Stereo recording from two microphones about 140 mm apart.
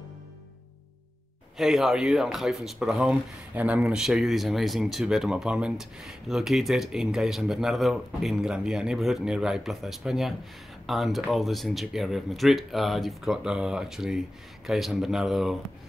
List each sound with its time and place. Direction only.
1.6 s speech: centre (ahead or behind)